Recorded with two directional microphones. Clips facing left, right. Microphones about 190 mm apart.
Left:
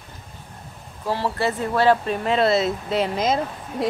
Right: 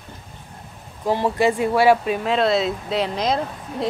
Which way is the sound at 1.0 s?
15° right (ahead or behind).